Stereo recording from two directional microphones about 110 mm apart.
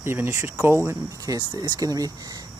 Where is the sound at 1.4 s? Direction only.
40° right (ahead or behind).